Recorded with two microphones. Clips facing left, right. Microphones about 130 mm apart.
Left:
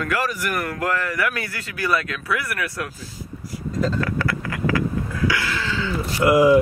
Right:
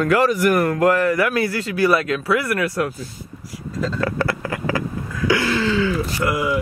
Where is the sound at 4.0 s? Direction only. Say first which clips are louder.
Right 2 dB; 30° right (ahead or behind).